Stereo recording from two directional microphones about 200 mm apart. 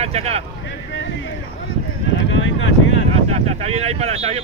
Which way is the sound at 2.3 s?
70° left (ahead or behind).